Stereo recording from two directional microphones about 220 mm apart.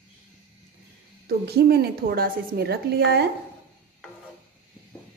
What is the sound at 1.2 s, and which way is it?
A woman's voice, 45° right (ahead or behind).